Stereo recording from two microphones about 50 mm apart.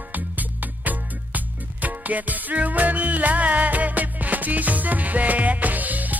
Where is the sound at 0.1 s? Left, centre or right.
Right.